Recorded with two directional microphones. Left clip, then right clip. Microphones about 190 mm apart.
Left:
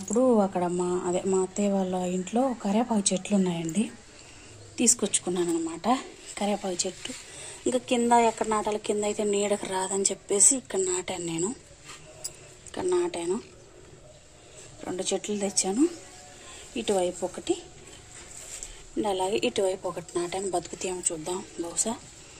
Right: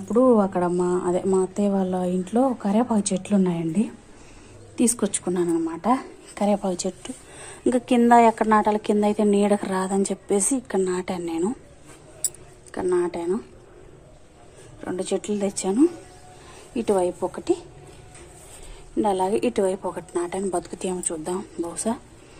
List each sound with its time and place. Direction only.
0.1 s a woman's voice: centre (ahead or behind)
5.7 s speech: 15° left (ahead or behind)
6.3 s a woman's voice: centre (ahead or behind)
12.7 s a woman's voice: 5° left (ahead or behind)
14.9 s a woman's voice: centre (ahead or behind)
18.9 s a woman's voice: centre (ahead or behind)